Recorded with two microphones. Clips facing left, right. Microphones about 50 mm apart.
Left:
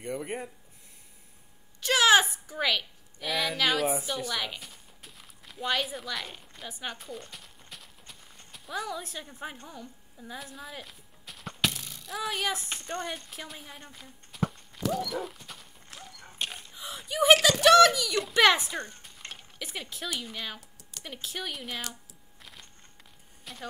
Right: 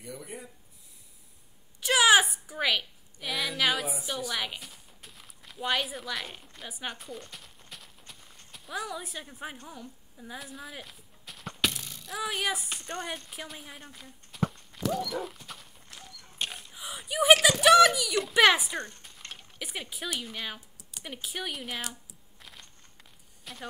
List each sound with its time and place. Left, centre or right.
0.0 s speech: left
1.8 s a woman's voice: centre
4.3 s a sound: centre
12.7 s speech: centre
13.0 s walk: centre
16.3 s a sound: centre
19.6 s speech: centre
22.4 s a sound: centre
23.4 s speech: centre